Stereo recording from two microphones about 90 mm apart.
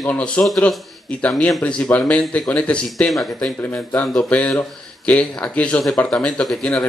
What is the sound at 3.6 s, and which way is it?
Speech, 20° left (ahead or behind).